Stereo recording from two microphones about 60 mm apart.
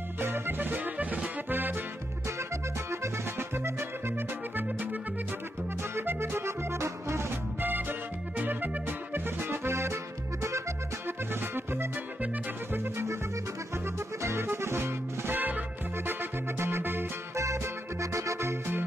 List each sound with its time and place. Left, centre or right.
0.2 s music: right
2.2 s music: right
4.6 s music: right
5.9 s accordion: right
8.4 s music: right
11.1 s music: right
13.9 s music: right
18.0 s music: right